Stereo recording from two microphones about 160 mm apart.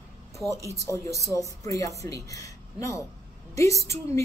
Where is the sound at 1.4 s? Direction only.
20° left (ahead or behind).